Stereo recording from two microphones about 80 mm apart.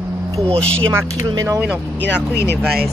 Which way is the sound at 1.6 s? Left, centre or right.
Centre.